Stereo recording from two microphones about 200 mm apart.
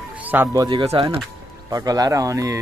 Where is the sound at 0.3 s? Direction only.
15° right (ahead or behind).